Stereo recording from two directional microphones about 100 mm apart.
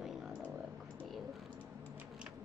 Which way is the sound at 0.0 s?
Centre (ahead or behind).